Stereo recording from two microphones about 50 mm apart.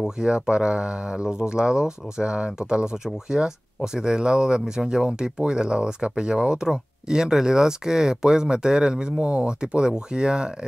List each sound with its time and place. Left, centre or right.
0.0 s speech: centre